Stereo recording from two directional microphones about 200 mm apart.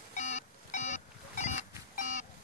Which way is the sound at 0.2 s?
35° left (ahead or behind).